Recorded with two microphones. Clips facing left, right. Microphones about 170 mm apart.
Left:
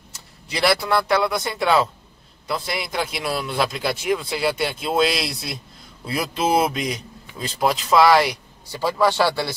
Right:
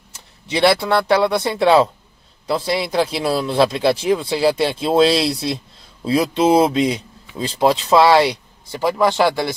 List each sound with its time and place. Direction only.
0.5 s a man's voice: 25° right (ahead or behind)
8.7 s speech: 15° right (ahead or behind)